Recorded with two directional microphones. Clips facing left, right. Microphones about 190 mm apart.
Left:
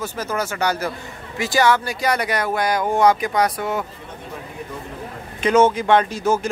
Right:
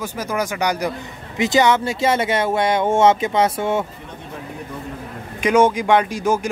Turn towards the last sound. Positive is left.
turn(degrees=-10)  # may be behind; listen again after turning